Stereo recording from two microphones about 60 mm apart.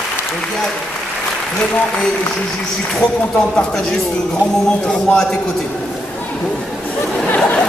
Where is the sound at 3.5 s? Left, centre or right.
Centre.